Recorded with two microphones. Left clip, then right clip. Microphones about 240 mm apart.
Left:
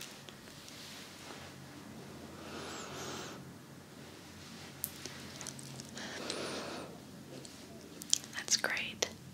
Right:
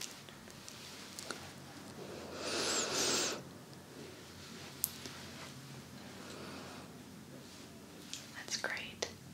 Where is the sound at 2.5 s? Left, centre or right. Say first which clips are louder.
Right 9 dB; right.